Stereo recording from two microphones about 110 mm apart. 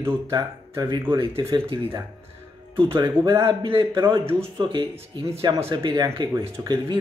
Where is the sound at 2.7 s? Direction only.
45° right (ahead or behind).